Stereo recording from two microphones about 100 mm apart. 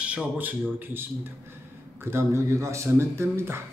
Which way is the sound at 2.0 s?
30° right (ahead or behind).